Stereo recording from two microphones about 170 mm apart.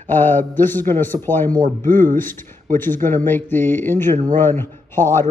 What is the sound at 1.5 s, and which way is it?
Speech, 50° right (ahead or behind).